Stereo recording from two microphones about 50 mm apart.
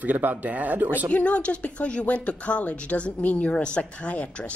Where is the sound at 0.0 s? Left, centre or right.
Right.